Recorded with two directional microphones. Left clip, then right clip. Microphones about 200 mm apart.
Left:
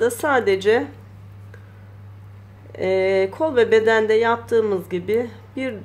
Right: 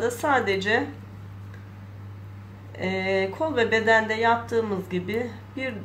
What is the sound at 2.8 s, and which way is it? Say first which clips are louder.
Speech: left 7 dB; 45° left (ahead or behind).